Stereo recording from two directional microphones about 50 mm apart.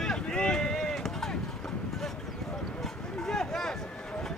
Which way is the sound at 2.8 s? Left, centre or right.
Centre.